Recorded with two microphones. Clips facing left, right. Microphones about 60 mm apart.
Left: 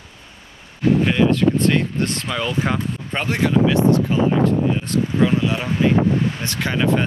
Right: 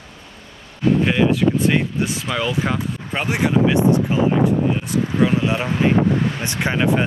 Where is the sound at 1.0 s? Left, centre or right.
Centre.